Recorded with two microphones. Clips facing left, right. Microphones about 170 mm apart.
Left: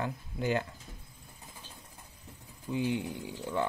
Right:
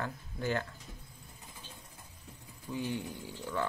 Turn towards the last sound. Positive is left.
turn(degrees=15)  # may be behind; listen again after turning